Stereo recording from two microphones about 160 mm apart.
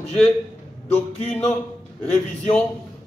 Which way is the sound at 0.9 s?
5° left (ahead or behind).